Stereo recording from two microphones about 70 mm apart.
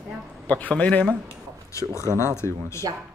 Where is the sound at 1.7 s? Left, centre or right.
Left.